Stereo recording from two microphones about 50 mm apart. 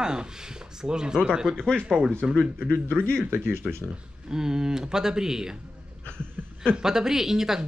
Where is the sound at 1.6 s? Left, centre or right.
Centre.